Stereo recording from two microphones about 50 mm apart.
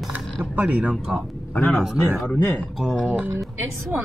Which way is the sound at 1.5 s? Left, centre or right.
Left.